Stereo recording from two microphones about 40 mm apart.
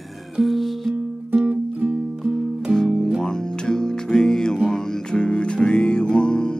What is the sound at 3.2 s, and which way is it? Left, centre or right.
Music, centre.